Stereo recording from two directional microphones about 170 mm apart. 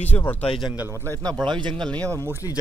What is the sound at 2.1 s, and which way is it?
Speech, 15° right (ahead or behind).